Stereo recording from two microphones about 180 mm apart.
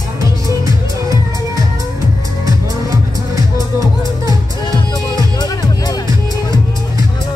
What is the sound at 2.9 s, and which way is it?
Music, 20° right (ahead or behind).